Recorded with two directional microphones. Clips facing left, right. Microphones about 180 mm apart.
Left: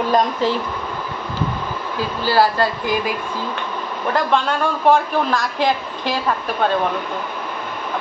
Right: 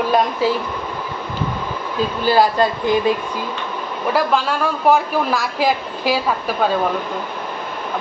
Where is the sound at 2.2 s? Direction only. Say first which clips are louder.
Right 1 dB; 20° right (ahead or behind).